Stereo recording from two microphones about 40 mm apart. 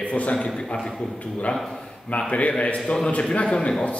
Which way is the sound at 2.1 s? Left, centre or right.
Left.